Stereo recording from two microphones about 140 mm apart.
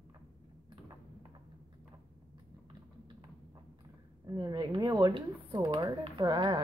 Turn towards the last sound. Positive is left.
turn(degrees=-35)  # may be behind; listen again after turning